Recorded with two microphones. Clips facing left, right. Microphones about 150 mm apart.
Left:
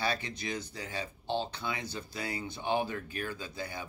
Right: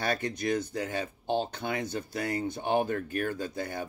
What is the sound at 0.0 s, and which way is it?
Speech, 50° right (ahead or behind).